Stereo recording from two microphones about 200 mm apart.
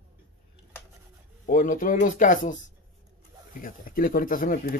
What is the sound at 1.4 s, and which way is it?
Speech, 45° left (ahead or behind).